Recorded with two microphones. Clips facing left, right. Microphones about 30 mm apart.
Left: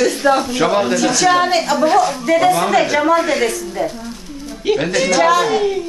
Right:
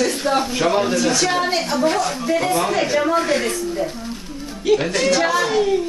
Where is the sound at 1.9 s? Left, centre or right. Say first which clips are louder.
Left 7 dB; centre.